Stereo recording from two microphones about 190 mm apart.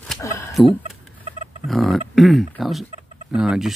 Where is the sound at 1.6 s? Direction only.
Centre (ahead or behind).